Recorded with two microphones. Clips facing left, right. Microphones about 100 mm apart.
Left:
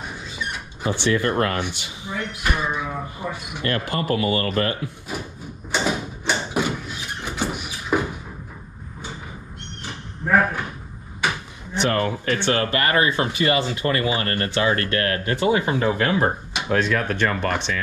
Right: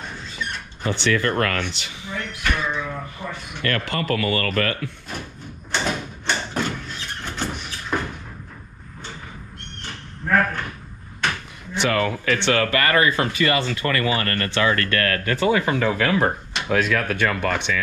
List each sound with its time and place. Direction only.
0.0 s a sound: 10° left (ahead or behind)
1.6 s speech: 15° left (ahead or behind)
5.1 s speech: 5° left (ahead or behind)
5.7 s sliding door: 10° left (ahead or behind)
9.8 s goat: 10° left (ahead or behind)
11.2 s a sound: 10° left (ahead or behind)
12.4 s speech: 20° left (ahead or behind)
16.7 s speech: centre (ahead or behind)